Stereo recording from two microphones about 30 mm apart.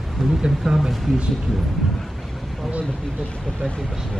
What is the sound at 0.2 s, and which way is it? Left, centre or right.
Speech, centre.